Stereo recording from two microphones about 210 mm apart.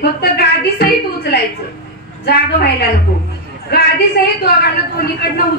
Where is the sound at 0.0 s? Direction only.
45° left (ahead or behind).